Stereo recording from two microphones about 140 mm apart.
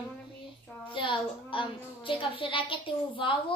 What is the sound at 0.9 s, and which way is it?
A woman's voice, 35° left (ahead or behind).